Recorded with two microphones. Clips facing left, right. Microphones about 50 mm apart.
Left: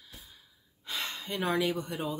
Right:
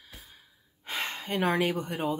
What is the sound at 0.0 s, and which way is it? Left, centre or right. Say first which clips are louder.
Gasp: right 2 dB; right.